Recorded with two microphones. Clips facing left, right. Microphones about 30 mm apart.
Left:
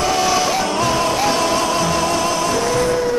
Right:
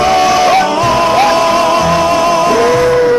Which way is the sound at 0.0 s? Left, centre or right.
Right.